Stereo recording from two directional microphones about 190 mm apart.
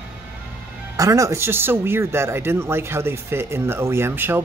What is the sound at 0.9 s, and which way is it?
Speech, 15° right (ahead or behind).